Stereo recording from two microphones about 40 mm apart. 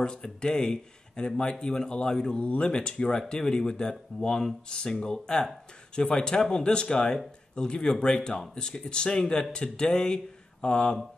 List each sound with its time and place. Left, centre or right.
0.0 s speech: left